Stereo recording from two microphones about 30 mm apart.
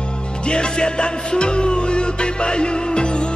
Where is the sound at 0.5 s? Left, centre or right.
Left.